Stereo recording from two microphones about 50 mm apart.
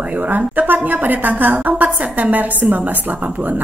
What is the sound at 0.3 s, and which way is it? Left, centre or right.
A woman's voice, right.